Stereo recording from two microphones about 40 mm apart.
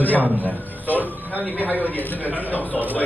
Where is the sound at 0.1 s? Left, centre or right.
Right.